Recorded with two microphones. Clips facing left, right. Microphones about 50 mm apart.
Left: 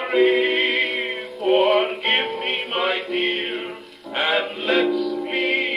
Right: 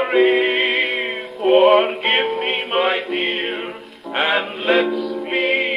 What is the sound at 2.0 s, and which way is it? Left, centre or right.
Music, centre.